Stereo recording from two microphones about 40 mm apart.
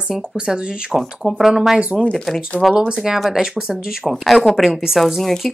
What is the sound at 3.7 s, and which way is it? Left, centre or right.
Speech, centre.